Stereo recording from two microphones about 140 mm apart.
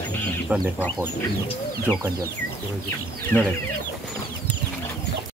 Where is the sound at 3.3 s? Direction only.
15° left (ahead or behind).